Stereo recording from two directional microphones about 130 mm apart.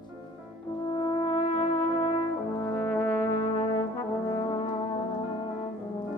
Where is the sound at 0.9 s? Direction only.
40° left (ahead or behind).